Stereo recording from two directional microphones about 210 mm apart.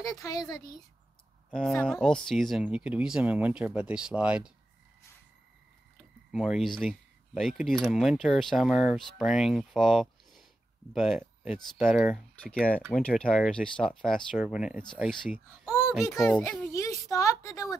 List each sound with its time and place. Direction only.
0.2 s speech: 15° left (ahead or behind)
1.7 s speech: 5° left (ahead or behind)
6.3 s speech: 5° right (ahead or behind)
16.1 s speech: 10° left (ahead or behind)